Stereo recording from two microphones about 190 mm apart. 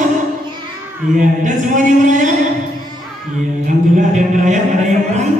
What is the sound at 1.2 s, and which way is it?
Singing, 45° right (ahead or behind).